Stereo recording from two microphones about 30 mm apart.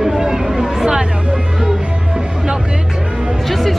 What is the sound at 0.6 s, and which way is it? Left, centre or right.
Hubbub, centre.